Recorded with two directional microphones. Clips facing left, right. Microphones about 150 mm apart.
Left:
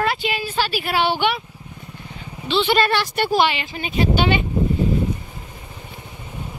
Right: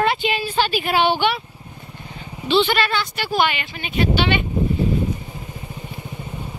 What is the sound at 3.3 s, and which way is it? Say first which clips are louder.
Speech: even; 30° left (ahead or behind).